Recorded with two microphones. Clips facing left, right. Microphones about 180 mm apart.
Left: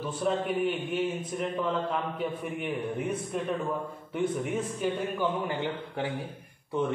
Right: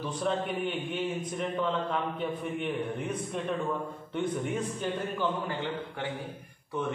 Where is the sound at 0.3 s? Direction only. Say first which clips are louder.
Left 4 dB; 5° left (ahead or behind).